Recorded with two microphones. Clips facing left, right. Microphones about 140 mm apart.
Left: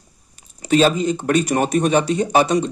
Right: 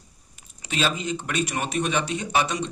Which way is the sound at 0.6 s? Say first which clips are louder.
Left 11 dB; 40° left (ahead or behind).